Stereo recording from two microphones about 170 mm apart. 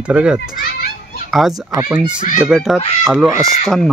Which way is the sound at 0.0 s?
5° right (ahead or behind).